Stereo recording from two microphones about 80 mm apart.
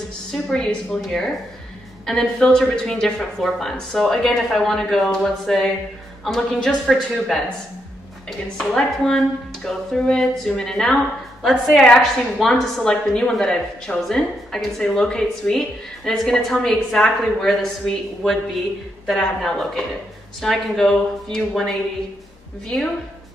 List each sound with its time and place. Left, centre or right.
0.3 s a woman's voice: centre